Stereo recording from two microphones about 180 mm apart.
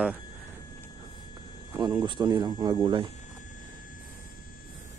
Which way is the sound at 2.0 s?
25° right (ahead or behind).